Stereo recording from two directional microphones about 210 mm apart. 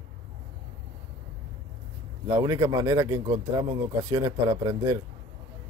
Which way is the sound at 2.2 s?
15° right (ahead or behind).